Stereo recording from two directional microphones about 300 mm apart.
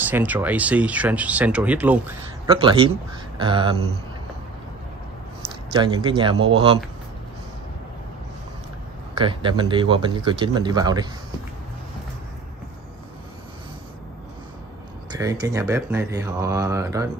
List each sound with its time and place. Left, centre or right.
0.0 s speech: centre
2.5 s speech: centre
5.7 s speech: centre
9.2 s speech: centre
15.0 s speech: centre